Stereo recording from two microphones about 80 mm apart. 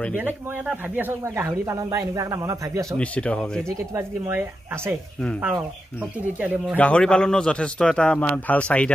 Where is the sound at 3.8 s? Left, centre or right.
Right.